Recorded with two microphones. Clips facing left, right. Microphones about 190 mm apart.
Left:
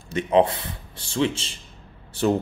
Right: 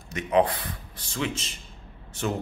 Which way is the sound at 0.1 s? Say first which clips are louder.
Left 3 dB; 25° left (ahead or behind).